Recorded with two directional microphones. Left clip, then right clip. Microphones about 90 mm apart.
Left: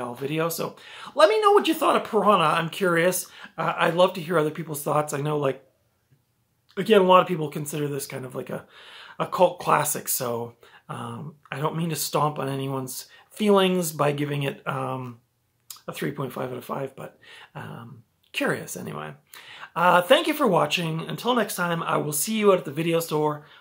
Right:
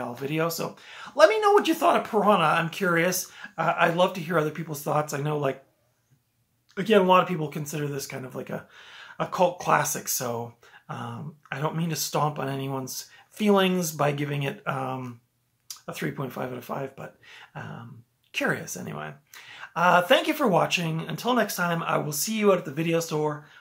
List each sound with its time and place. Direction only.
0.2 s speech: 5° left (ahead or behind)
0.5 s speech: 25° left (ahead or behind)
6.7 s speech: 30° left (ahead or behind)